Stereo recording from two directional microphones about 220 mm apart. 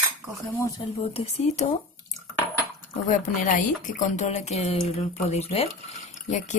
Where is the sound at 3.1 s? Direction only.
35° left (ahead or behind).